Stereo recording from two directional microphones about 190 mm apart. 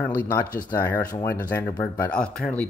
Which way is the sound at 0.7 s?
15° left (ahead or behind).